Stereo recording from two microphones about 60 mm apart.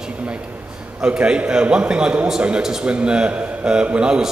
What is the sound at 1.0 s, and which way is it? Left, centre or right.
A man's voice, centre.